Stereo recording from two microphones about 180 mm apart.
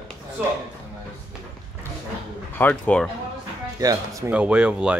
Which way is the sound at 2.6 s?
10° left (ahead or behind).